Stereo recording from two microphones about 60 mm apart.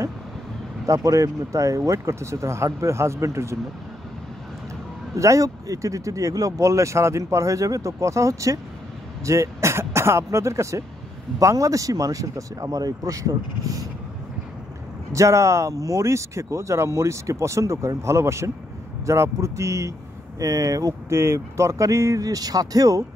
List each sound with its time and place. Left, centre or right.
0.8 s speech: right
5.1 s speech: right
11.3 s speech: right
15.1 s speech: right
20.3 s speech: right
21.1 s speech: right